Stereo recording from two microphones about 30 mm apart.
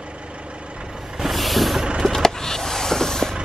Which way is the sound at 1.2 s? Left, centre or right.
Centre.